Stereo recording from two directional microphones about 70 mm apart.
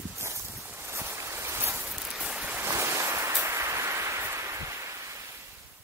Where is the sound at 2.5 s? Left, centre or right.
Right.